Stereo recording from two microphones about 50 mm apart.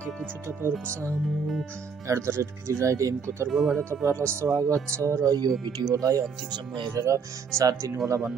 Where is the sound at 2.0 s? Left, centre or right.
Right.